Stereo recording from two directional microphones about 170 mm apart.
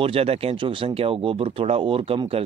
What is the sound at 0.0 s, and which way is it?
Speech, 35° right (ahead or behind).